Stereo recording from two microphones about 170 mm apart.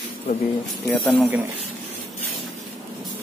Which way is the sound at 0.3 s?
55° left (ahead or behind).